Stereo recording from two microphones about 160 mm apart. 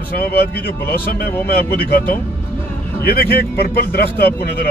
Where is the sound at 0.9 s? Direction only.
70° left (ahead or behind).